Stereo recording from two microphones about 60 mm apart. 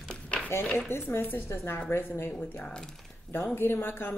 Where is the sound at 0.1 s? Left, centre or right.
Centre.